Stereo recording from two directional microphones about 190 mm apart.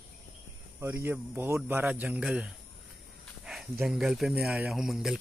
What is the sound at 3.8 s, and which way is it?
Speech, centre (ahead or behind).